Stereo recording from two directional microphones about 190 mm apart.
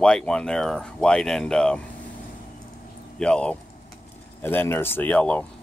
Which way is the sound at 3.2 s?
5° left (ahead or behind).